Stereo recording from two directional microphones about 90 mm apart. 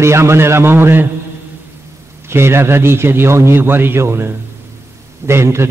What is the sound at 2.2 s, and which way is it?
A man's voice, 30° right (ahead or behind).